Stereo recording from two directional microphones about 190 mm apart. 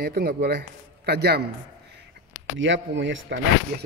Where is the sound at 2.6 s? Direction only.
75° right (ahead or behind).